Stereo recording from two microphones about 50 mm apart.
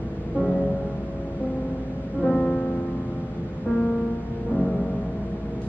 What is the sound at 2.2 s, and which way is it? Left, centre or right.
Music, left.